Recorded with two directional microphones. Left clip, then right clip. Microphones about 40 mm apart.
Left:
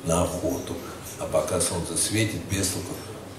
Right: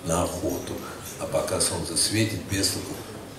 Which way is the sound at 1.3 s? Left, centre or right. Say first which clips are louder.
Left 1 dB; right.